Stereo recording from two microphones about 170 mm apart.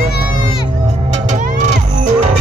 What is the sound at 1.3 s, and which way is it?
Music, 45° right (ahead or behind).